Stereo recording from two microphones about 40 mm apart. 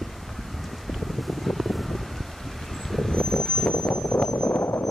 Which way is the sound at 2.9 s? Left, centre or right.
Centre.